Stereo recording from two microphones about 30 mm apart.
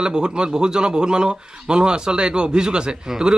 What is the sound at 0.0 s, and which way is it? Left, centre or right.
Speech, right.